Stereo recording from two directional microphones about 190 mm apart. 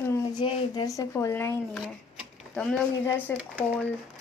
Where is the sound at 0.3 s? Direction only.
20° left (ahead or behind).